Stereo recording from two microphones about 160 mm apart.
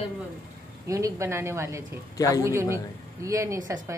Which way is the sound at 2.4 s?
15° right (ahead or behind).